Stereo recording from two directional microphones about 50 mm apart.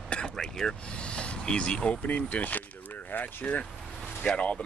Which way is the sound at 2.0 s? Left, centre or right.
Left.